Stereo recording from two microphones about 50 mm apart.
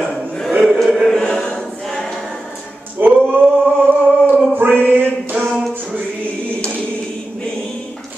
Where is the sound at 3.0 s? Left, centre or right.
Right.